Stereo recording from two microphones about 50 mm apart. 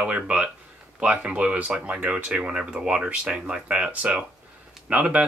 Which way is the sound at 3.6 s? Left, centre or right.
Right.